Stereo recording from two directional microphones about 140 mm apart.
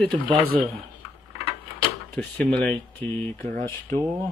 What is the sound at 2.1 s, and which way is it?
Speech, 10° left (ahead or behind).